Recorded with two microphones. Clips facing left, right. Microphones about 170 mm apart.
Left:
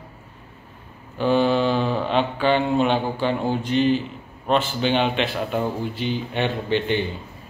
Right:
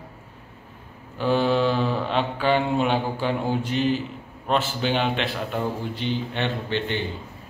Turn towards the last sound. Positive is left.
turn(degrees=10)  # may be behind; listen again after turning